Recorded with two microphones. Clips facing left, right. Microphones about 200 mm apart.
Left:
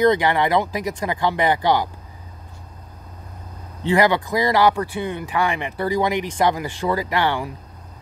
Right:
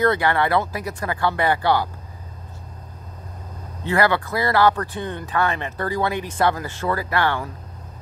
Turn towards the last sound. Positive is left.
turn(degrees=15)  # may be behind; listen again after turning